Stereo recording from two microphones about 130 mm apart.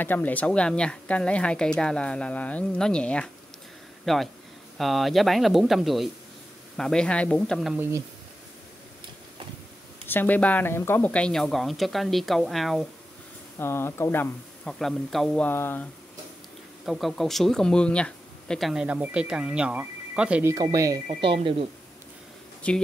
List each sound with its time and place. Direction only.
0.0 s speech: 15° left (ahead or behind)
10.0 s speech: 15° left (ahead or behind)
13.6 s speech: 20° left (ahead or behind)
14.6 s speech: 5° left (ahead or behind)
15.4 s speech: 15° left (ahead or behind)
16.8 s speech: centre (ahead or behind)
20.4 s speech: 30° right (ahead or behind)
21.1 s speech: 40° right (ahead or behind)
22.6 s speech: 10° left (ahead or behind)